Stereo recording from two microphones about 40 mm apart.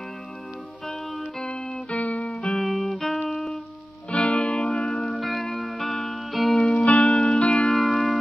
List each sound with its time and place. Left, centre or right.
1.4 s music: left
2.6 s music: centre
4.1 s music: left
5.1 s music: centre
6.7 s music: left
7.7 s music: centre